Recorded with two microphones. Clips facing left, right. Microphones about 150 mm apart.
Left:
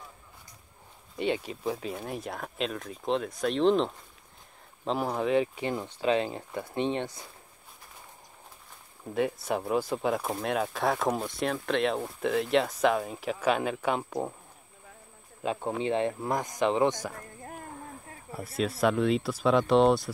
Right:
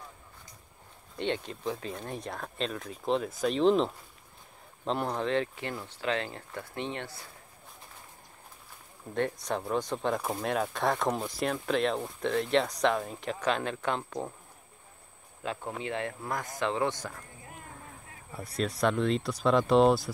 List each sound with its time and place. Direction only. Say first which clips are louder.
1.1 s speech: left 3 dB; 10° left (ahead or behind)
9.1 s speech: left 2 dB; 5° left (ahead or behind)
15.4 s speech: left 6 dB; 15° left (ahead or behind)
18.3 s speech: left 2 dB; centre (ahead or behind)